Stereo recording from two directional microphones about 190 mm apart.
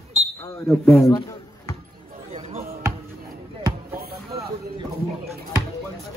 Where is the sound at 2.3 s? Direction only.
35° right (ahead or behind).